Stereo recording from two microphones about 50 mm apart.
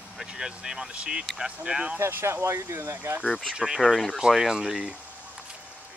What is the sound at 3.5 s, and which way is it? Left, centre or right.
Speech, centre.